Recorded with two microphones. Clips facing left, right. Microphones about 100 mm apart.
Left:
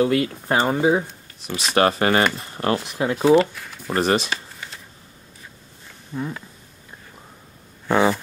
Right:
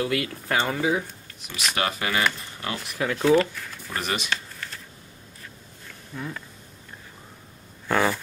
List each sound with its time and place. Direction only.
0.0 s speech: 30° left (ahead or behind)
1.8 s speech: 45° left (ahead or behind)
2.8 s speech: 25° left (ahead or behind)
3.3 s speech: 5° left (ahead or behind)
3.9 s speech: 35° left (ahead or behind)
4.3 s shuffling cards: 5° left (ahead or behind)
6.1 s speech: 20° left (ahead or behind)
7.9 s speech: 15° left (ahead or behind)